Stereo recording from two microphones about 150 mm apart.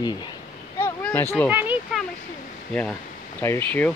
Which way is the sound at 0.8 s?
15° left (ahead or behind).